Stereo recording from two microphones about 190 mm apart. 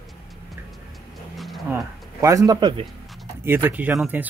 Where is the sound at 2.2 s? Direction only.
20° right (ahead or behind).